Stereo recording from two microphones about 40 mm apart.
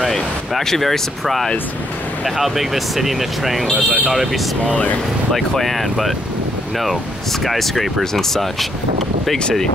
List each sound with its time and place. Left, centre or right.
0.0 s speech: centre
3.7 s speech: right
4.1 s speech: centre
5.6 s speech: centre
7.4 s speech: centre
9.4 s speech: left